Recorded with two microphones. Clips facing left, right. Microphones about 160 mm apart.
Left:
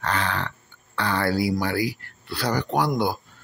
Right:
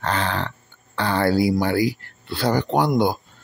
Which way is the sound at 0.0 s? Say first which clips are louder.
Right 2 dB; 30° right (ahead or behind).